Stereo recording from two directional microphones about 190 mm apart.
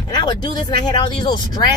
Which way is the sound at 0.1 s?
20° left (ahead or behind).